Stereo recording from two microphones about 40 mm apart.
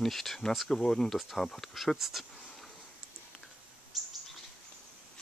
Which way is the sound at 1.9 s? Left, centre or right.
Centre.